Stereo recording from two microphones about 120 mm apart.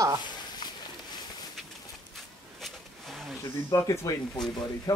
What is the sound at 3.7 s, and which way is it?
Speech, 25° left (ahead or behind).